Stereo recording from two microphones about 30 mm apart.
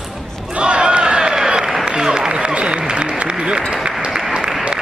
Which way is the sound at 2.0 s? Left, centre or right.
Centre.